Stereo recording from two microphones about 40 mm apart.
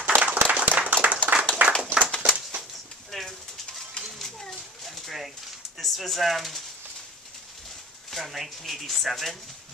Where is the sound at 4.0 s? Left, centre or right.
Left.